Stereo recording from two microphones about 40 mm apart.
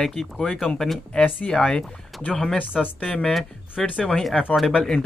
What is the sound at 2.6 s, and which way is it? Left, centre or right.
Speech, left.